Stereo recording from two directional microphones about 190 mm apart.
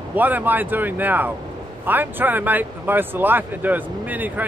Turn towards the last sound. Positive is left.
turn(degrees=-10)  # may be behind; listen again after turning